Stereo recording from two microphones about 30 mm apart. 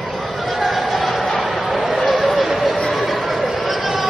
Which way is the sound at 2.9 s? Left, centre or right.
Centre.